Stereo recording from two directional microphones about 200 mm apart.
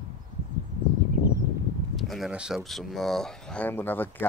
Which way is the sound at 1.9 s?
Centre (ahead or behind).